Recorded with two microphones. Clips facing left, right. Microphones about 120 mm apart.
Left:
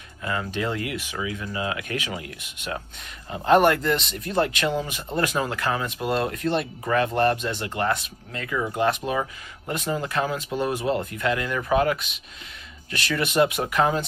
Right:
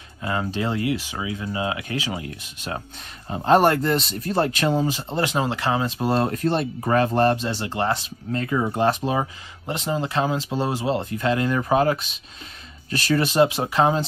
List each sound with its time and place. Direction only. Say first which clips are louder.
0.2 s speech: right 2 dB; 30° right (ahead or behind)